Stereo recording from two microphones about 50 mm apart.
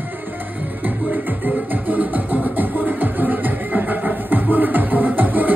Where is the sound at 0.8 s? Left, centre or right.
Right.